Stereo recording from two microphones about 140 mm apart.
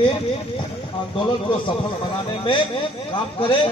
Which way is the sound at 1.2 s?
35° left (ahead or behind).